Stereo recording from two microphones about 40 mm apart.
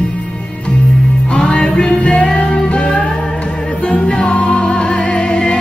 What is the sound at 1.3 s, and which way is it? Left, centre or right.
Music, left.